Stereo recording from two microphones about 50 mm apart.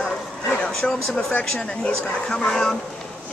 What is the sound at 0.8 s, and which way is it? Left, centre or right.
Speech, centre.